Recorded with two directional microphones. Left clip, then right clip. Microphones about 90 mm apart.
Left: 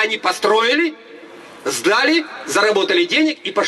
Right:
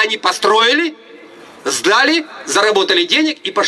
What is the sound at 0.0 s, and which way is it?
A man's voice, 15° right (ahead or behind).